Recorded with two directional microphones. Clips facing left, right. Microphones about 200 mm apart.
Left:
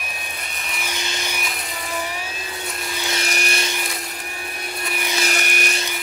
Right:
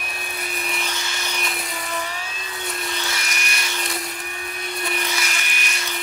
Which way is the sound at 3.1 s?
30° left (ahead or behind).